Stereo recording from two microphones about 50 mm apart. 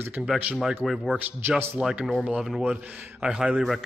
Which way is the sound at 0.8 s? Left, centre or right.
Centre.